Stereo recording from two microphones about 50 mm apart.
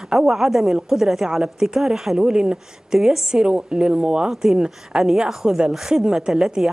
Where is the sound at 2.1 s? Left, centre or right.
Centre.